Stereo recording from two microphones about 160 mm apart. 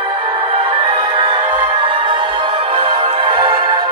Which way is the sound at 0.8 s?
30° right (ahead or behind).